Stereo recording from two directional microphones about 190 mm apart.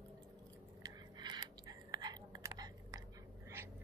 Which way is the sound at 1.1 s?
20° right (ahead or behind).